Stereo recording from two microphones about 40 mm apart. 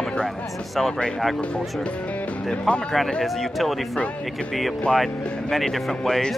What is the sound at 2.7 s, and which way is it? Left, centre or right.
Speech, left.